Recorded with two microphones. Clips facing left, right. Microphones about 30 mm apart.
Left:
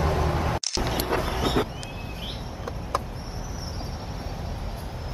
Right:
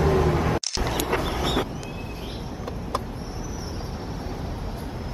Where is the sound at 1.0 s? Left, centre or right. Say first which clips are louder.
Right 2 dB; right.